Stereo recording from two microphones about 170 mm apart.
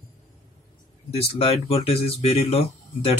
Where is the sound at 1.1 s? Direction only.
35° left (ahead or behind).